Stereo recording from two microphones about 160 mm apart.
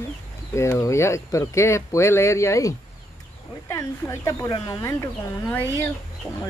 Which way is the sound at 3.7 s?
20° left (ahead or behind).